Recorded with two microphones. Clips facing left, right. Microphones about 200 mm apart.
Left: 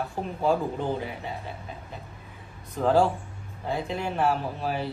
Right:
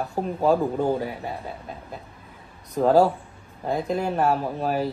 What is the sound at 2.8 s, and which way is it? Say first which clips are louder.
Speech: right 4 dB; 40° right (ahead or behind).